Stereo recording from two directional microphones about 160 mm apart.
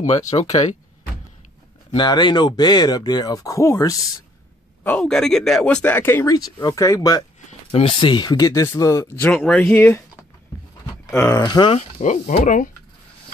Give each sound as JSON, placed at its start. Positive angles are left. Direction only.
{"t": 0.3, "sound": "speech", "side_deg": 30}
{"t": 2.0, "sound": "speech", "side_deg": 25}
{"t": 4.8, "sound": "speech", "side_deg": 5}
{"t": 7.7, "sound": "speech", "side_deg": 35}
{"t": 9.3, "sound": "speech", "side_deg": 10}
{"t": 11.1, "sound": "speech", "side_deg": 15}
{"t": 12.0, "sound": "speech", "side_deg": 50}